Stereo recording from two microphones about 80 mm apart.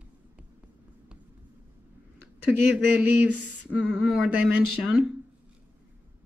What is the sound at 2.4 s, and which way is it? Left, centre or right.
Speech, right.